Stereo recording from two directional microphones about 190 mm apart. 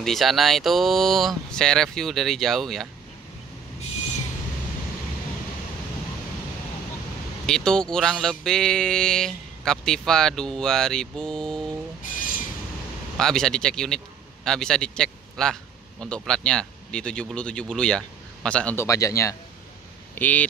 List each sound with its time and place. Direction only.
0.0 s speech: centre (ahead or behind)
7.4 s speech: 5° left (ahead or behind)
12.1 s vehicle: 45° left (ahead or behind)
13.2 s a man's voice: centre (ahead or behind)